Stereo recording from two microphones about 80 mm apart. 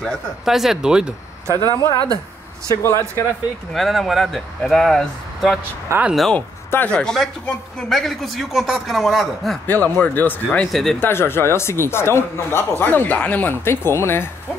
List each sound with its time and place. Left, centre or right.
0.0 s speech: centre
1.7 s speech: left
3.7 s speech: centre
5.9 s speech: right
6.9 s speech: centre
9.7 s speech: left
10.7 s speech: centre
11.0 s speech: left